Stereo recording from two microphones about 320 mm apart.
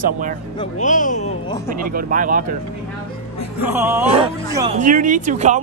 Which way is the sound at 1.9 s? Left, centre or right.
Right.